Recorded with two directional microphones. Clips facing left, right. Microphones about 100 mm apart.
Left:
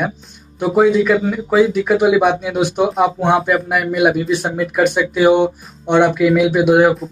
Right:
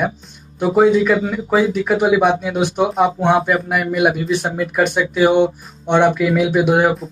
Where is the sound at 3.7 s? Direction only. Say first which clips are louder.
Left 2 dB; 40° right (ahead or behind).